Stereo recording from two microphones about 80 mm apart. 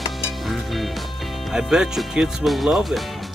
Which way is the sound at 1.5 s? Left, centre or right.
Centre.